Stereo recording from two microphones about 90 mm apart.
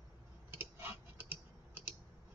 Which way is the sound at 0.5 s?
20° right (ahead or behind).